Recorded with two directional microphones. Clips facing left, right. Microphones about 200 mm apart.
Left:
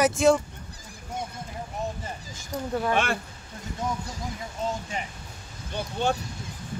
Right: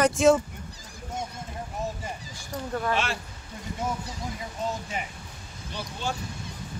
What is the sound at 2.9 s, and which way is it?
Speech, 55° left (ahead or behind).